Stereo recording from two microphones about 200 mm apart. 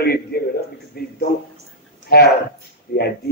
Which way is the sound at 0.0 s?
50° left (ahead or behind).